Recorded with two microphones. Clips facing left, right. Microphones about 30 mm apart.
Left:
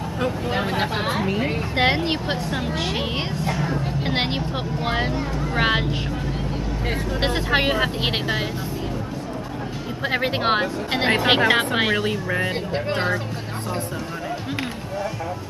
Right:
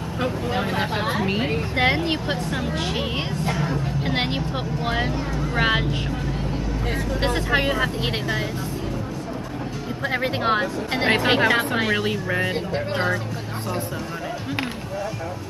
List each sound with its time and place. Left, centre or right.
0.5 s speech: centre
1.8 s speech: left
2.5 s speech: centre
3.4 s speech: centre
3.7 s speech: centre
7.3 s speech: left
10.0 s speech: left
11.9 s speech: centre
12.7 s speech: centre